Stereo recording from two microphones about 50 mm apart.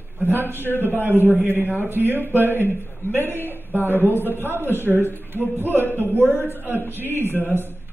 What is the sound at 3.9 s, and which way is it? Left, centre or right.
Speech, left.